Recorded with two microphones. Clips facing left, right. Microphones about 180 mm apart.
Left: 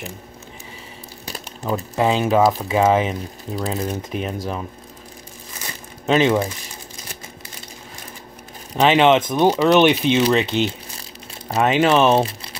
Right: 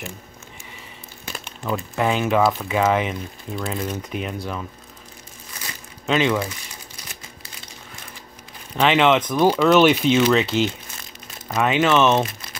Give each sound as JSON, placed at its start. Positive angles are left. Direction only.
{"t": 1.6, "sound": "speech", "side_deg": 40}
{"t": 2.0, "sound": "speech", "side_deg": 30}
{"t": 6.0, "sound": "speech", "side_deg": 35}
{"t": 8.7, "sound": "speech", "side_deg": 35}
{"t": 10.6, "sound": "speech", "side_deg": 35}